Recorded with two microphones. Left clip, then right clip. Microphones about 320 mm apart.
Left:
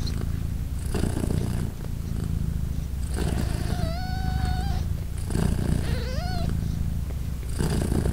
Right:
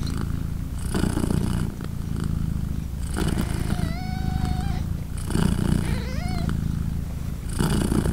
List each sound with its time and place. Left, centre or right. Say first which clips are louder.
0.9 s purr: right 4 dB; centre
5.3 s purr: right 4 dB; centre
5.9 s cat: right 1 dB; centre
7.5 s purr: right 4 dB; centre